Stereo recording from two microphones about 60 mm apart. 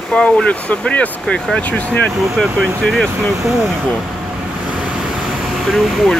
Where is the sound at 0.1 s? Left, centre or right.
Centre.